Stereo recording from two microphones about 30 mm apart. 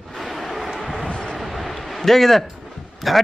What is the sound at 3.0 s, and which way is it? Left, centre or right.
Speech, centre.